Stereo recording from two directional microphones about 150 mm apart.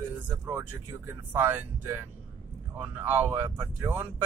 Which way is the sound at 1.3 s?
15° right (ahead or behind).